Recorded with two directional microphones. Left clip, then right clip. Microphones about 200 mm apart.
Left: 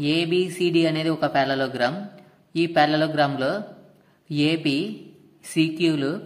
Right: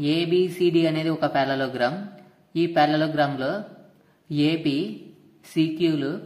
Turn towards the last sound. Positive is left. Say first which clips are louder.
# left 1 dB
turn(degrees=10)  # may be behind; listen again after turning